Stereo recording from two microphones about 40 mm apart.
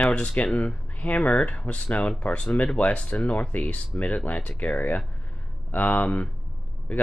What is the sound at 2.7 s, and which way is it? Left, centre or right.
Speech, left.